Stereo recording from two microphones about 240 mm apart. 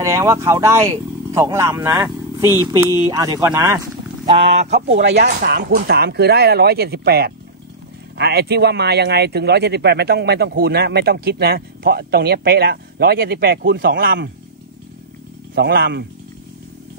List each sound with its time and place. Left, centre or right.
0.0 s speech: centre
4.6 s speech: right
5.2 s speech: right
15.5 s speech: right